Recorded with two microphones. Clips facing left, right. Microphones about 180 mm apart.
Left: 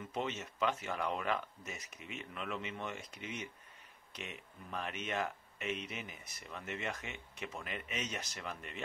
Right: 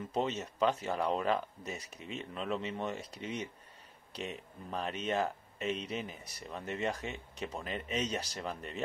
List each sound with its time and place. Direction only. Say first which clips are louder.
0.1 s speech: right 5 dB; 35° right (ahead or behind)